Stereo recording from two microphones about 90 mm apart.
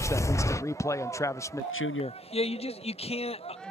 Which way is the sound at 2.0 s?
90° left.